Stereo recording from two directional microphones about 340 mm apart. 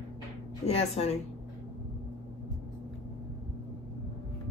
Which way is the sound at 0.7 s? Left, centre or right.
Centre.